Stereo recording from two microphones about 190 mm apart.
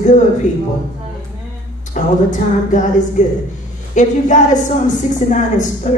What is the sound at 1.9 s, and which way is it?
A woman's voice, 40° left (ahead or behind).